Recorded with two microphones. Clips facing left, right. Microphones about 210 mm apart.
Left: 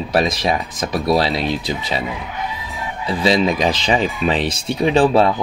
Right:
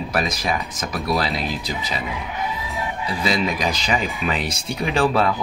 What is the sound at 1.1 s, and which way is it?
Speech, 30° left (ahead or behind).